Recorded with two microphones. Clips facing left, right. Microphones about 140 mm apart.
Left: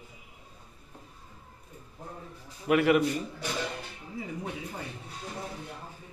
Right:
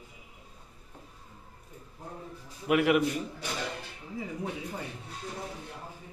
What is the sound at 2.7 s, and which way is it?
Speech, 10° right (ahead or behind).